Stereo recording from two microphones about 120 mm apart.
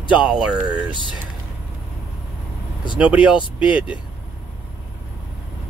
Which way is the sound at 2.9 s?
10° right (ahead or behind).